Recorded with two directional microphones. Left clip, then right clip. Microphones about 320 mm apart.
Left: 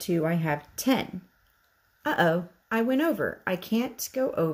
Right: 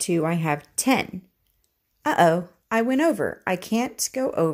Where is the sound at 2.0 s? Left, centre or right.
Centre.